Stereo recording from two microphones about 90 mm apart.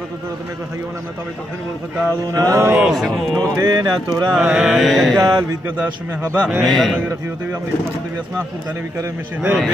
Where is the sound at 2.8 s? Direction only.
Centre (ahead or behind).